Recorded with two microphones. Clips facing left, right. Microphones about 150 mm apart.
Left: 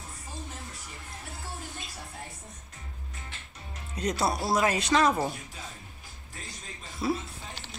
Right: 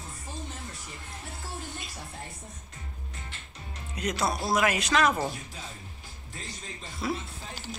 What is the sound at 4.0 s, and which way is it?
Speech, 30° left (ahead or behind).